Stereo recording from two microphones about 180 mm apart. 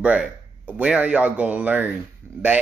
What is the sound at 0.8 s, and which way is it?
Speech, 5° right (ahead or behind).